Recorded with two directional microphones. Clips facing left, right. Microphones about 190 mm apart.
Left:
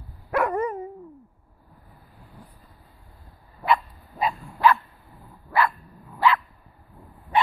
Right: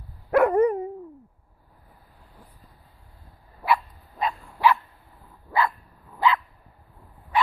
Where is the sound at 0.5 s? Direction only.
60° right (ahead or behind).